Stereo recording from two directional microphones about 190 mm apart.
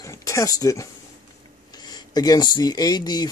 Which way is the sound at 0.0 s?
15° left (ahead or behind).